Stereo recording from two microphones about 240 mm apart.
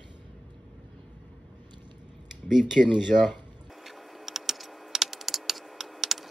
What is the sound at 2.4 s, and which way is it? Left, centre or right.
Speech, centre.